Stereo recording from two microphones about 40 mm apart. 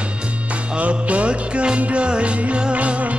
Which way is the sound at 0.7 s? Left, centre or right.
Right.